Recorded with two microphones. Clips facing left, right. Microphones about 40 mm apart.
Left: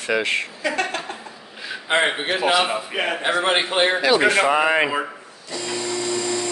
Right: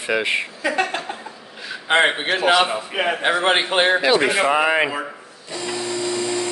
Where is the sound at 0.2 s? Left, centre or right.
Centre.